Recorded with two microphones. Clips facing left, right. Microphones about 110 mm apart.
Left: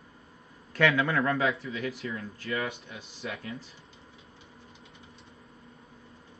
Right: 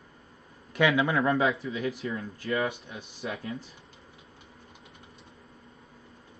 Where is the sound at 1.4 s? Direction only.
30° right (ahead or behind).